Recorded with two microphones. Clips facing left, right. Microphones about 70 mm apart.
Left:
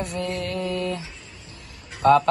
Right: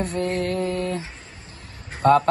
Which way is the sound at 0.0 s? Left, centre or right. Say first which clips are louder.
Right 4 dB; right.